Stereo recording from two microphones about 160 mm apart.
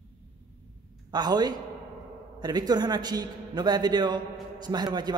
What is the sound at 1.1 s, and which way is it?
A man's voice, 25° right (ahead or behind).